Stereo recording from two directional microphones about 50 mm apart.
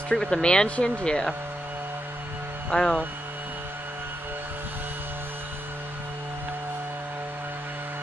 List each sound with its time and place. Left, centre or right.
0.1 s speech: centre
2.7 s speech: centre